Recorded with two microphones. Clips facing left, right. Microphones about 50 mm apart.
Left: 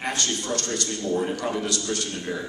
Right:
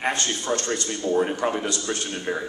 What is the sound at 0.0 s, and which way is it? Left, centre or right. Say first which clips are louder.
A man's voice: right 2 dB; right.